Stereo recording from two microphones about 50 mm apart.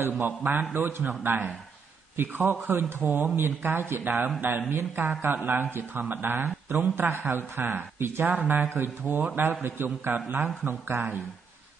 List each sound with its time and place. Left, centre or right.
0.0 s speech: right
2.1 s a man's voice: right
2.8 s speech: right
4.0 s a man's voice: right